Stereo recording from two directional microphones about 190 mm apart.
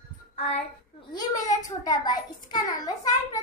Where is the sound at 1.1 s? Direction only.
20° left (ahead or behind).